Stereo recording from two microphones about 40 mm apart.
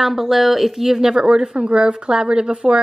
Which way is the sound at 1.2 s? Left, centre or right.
Right.